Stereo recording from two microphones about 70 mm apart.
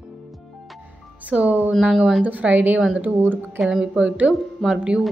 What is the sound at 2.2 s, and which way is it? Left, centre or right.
Speech, right.